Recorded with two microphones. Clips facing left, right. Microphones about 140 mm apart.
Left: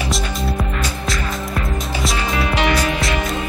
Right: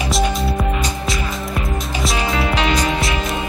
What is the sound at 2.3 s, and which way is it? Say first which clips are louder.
Music: left 2 dB; 25° right (ahead or behind).